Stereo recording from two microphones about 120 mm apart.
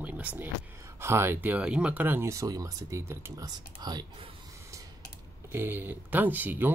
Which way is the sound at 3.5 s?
35° right (ahead or behind).